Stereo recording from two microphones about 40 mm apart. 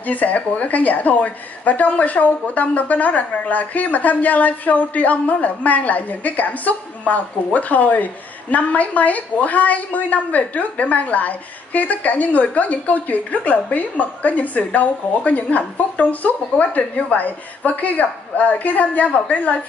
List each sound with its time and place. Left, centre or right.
0.0 s speech: left